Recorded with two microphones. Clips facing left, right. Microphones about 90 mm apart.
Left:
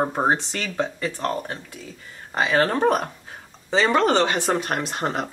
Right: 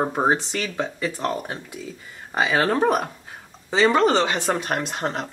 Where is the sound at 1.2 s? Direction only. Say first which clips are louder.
Even; 15° right (ahead or behind).